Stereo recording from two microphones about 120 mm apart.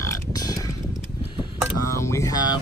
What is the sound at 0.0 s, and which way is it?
Burping, 30° left (ahead or behind).